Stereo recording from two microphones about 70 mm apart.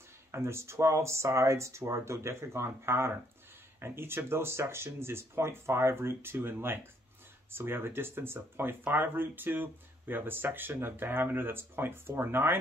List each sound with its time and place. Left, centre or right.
0.3 s speech: right